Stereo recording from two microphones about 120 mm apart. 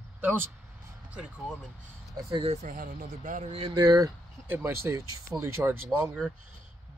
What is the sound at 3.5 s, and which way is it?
Speech, 45° right (ahead or behind).